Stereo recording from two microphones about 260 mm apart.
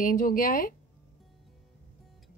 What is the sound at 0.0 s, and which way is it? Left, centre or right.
Speech, left.